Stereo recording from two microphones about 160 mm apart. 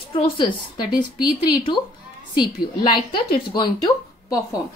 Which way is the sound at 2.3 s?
30° left (ahead or behind).